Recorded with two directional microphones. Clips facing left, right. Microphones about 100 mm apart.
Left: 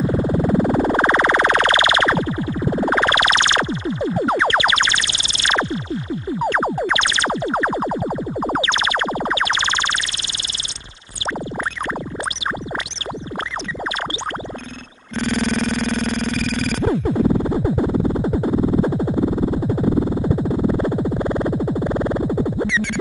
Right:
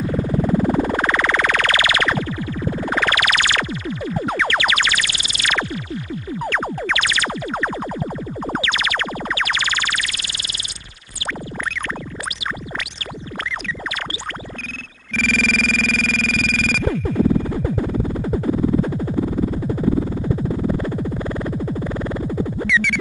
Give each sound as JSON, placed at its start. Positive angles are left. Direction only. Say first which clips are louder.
{"t": 0.0, "sound": "music", "louder": "left 2 dB", "side_deg": 20}
{"t": 8.5, "sound": "music", "louder": "left 1 dB", "side_deg": 25}
{"t": 15.1, "sound": "music", "louder": "left 1 dB", "side_deg": 25}
{"t": 20.1, "sound": "synthesizer", "louder": "left 3 dB", "side_deg": 20}